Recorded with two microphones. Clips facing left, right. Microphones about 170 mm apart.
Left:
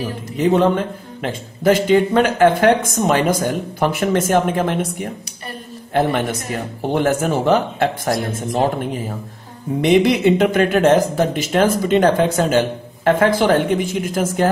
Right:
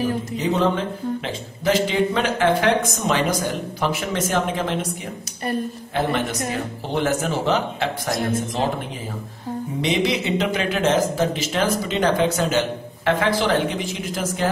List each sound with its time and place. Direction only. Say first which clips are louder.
0.4 s a man's voice: left 7 dB; 55° left (ahead or behind)
5.9 s a man's voice: left 5 dB; 50° left (ahead or behind)
9.8 s a man's voice: left 8 dB; 55° left (ahead or behind)